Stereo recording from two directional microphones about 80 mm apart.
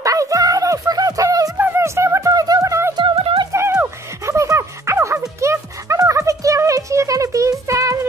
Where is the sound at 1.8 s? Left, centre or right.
Right.